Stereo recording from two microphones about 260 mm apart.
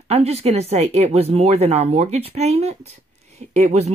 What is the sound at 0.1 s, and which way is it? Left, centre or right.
Speech, right.